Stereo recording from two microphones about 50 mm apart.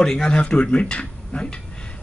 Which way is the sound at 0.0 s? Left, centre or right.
Centre.